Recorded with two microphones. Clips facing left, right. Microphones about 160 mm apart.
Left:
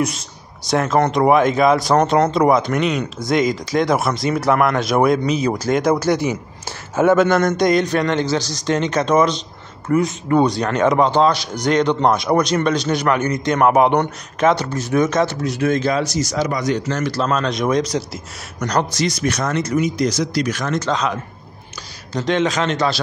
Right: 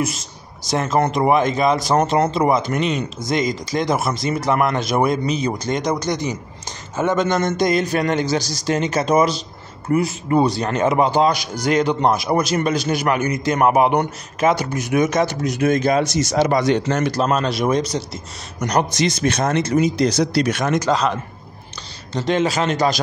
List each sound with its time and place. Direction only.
0.7 s a man's voice: centre (ahead or behind); by 16.9 s 30° right (ahead or behind)
17.1 s a man's voice: 15° right (ahead or behind)
18.7 s a man's voice: 20° right (ahead or behind)